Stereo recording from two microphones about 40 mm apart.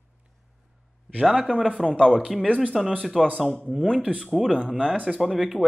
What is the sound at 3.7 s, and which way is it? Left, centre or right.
Speech, centre.